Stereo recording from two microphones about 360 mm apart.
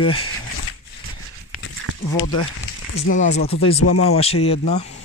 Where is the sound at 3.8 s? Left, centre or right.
Left.